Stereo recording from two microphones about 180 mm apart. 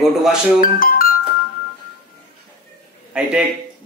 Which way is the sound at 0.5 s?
55° left (ahead or behind).